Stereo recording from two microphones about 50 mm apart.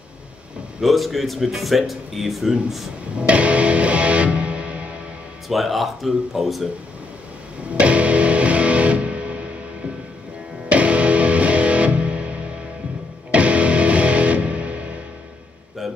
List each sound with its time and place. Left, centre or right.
0.7 s speech: centre
3.2 s music: right
5.5 s speech: centre
7.7 s music: right
10.7 s music: right
15.8 s a sound: centre